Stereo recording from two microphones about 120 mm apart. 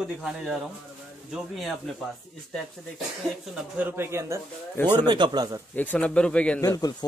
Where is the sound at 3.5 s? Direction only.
15° right (ahead or behind).